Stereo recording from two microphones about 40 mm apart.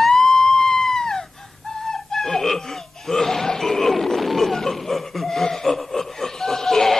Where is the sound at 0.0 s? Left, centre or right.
Centre.